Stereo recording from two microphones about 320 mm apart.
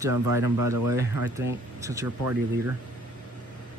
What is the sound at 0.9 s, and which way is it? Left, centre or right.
Speech, centre.